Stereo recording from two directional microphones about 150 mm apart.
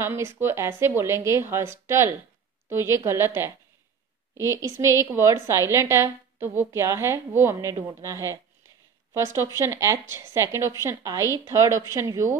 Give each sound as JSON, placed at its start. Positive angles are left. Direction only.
{"t": 0.0, "sound": "a woman's voice", "side_deg": -15}